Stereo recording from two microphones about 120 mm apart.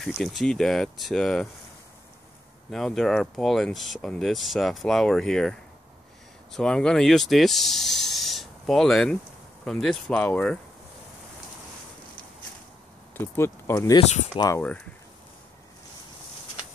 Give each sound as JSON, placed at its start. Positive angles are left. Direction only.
{"t": 0.2, "sound": "speech", "side_deg": 0}
{"t": 2.7, "sound": "speech", "side_deg": 0}
{"t": 13.2, "sound": "speech", "side_deg": 20}
{"t": 14.0, "sound": "speech", "side_deg": 70}